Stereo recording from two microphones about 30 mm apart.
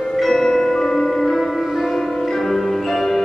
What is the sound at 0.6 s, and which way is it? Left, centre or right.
Music, centre.